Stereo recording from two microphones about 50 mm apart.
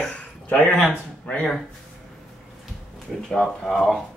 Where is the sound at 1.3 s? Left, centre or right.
Left.